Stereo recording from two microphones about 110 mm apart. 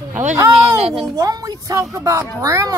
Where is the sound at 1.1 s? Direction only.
35° right (ahead or behind).